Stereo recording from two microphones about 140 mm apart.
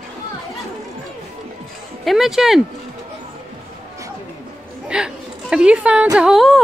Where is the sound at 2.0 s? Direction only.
5° right (ahead or behind).